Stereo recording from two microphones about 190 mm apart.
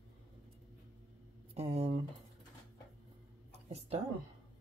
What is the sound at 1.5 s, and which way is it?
Speech, 35° right (ahead or behind).